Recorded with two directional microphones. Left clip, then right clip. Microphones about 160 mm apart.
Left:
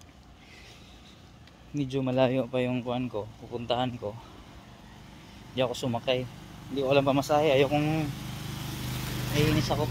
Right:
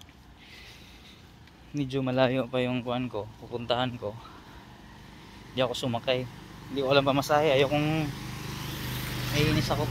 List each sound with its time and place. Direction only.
1.8 s speech: 10° left (ahead or behind)
5.5 s speech: 5° left (ahead or behind)
8.9 s vehicle: 70° left (ahead or behind)
9.4 s speech: 20° left (ahead or behind)